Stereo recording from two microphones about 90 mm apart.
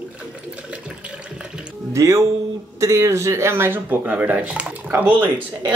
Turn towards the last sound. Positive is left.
turn(degrees=-20)  # may be behind; listen again after turning